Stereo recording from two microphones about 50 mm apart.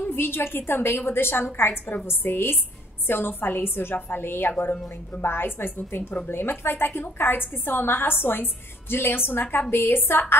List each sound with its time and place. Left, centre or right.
0.0 s a woman's voice: left